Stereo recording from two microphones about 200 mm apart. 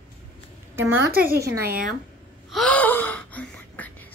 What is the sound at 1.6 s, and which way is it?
Speech, 45° right (ahead or behind).